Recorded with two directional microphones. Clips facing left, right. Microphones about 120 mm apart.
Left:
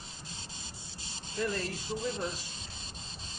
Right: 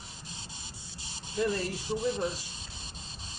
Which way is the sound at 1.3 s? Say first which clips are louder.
Right 4 dB; 15° right (ahead or behind).